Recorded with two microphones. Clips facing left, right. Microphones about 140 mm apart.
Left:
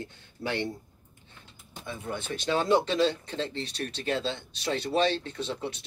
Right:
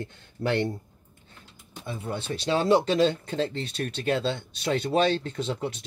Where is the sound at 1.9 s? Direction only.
30° right (ahead or behind).